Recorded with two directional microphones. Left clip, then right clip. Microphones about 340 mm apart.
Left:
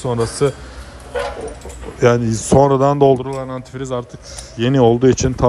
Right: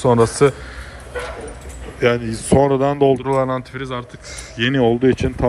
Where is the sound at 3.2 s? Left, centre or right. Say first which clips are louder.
Right 6 dB; centre.